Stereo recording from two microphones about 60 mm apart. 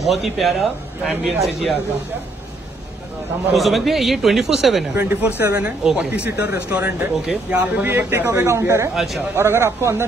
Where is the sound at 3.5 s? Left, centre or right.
Centre.